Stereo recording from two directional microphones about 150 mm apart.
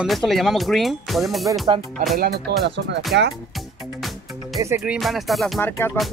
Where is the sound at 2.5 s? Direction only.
90° right.